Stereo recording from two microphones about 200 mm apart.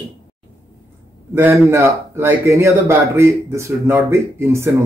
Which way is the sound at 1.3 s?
10° right (ahead or behind).